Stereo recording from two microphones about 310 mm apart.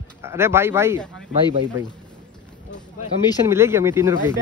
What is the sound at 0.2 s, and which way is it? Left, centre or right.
Speech, centre.